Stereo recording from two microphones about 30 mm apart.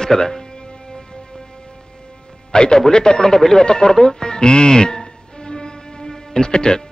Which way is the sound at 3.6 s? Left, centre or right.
Left.